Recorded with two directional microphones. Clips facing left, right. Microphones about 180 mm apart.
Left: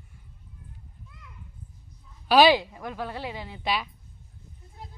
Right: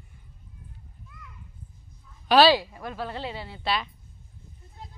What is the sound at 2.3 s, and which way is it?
A woman's voice, 15° left (ahead or behind).